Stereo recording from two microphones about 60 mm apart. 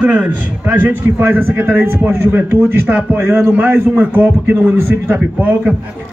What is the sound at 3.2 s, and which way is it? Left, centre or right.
A man's voice, right.